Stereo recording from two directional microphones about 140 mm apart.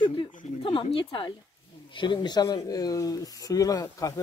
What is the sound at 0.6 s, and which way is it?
Speech, 40° left (ahead or behind).